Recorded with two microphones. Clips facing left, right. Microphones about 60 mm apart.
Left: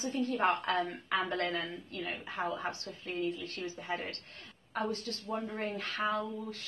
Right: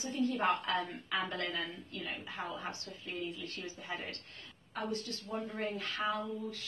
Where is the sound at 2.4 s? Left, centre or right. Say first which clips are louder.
Left 7 dB; left.